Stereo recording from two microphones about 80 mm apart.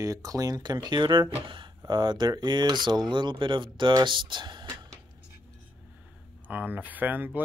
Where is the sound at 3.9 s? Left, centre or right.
Right.